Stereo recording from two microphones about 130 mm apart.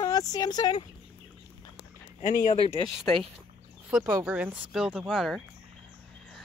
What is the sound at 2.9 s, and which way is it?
Speech, centre (ahead or behind).